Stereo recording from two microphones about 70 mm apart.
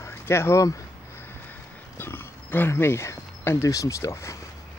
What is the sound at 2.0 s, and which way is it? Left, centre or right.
Speech, left.